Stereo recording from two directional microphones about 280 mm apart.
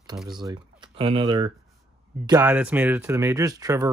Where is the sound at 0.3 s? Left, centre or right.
Centre.